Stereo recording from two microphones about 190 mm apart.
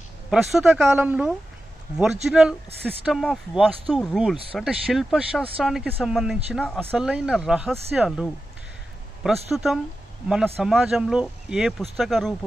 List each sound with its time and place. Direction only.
0.3 s a woman's voice: centre (ahead or behind)
6.8 s speech: 10° right (ahead or behind)